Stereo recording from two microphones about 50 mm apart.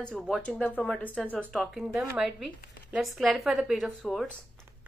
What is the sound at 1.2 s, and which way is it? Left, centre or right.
Speech, centre.